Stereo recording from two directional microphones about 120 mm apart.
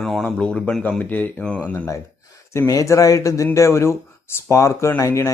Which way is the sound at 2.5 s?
25° left (ahead or behind).